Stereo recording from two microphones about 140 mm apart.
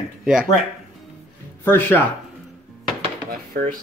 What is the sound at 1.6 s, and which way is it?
Speech, 15° left (ahead or behind).